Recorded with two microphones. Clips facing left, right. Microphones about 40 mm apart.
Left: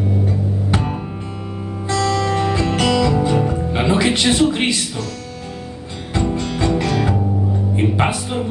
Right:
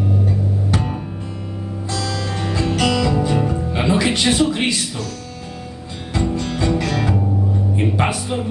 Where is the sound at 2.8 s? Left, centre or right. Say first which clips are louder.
Left 1 dB; centre.